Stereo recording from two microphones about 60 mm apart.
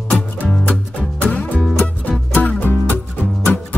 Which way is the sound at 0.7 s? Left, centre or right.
Left.